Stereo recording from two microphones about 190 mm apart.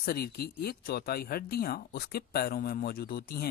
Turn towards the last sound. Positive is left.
turn(degrees=55)  # may be behind; listen again after turning